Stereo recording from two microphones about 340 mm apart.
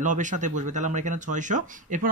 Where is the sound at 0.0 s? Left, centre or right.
Right.